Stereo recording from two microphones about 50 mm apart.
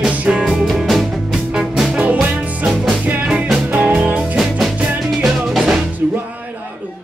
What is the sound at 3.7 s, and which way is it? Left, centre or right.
Music, right.